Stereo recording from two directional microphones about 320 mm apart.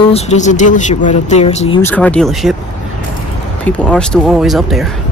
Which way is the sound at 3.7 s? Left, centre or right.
Centre.